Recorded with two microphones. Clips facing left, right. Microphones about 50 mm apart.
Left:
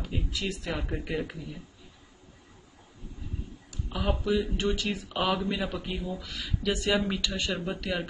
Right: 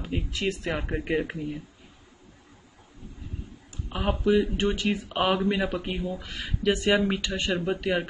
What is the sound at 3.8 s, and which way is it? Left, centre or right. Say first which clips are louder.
Speech: right 4 dB; right.